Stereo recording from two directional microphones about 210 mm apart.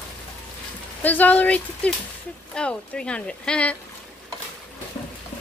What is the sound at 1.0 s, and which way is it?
Speech, 10° left (ahead or behind).